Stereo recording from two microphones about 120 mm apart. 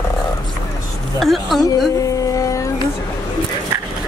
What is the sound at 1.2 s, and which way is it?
Speech, centre (ahead or behind).